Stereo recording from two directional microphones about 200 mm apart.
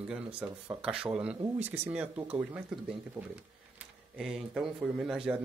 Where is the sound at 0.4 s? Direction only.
5° right (ahead or behind).